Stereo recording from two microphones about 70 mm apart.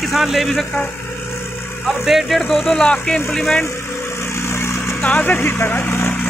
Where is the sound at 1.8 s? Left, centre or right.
Centre.